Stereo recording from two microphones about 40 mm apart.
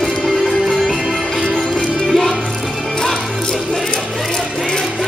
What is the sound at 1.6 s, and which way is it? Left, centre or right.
Music, centre.